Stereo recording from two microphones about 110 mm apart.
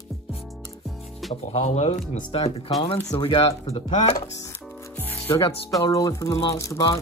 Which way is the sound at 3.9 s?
90° left.